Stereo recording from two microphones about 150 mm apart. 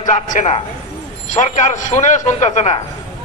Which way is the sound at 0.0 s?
55° left (ahead or behind).